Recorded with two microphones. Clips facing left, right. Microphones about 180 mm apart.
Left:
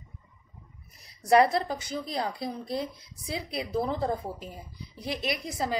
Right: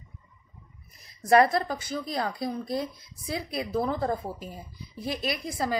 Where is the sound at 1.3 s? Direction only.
25° left (ahead or behind).